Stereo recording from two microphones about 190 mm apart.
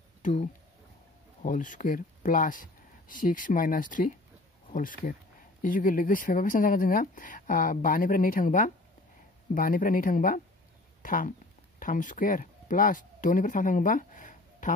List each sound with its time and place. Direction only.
0.2 s speech: 35° left (ahead or behind)